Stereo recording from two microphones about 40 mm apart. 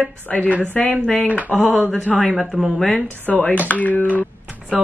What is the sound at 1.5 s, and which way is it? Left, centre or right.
Speech, centre.